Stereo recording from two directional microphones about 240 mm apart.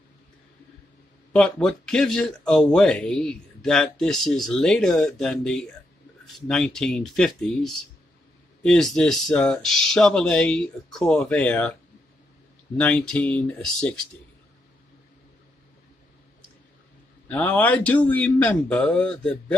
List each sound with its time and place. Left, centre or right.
1.3 s speech: centre
12.7 s speech: centre
17.3 s speech: centre